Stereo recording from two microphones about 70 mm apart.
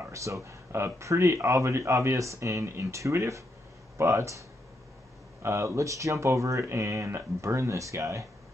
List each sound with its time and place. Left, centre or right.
0.0 s speech: right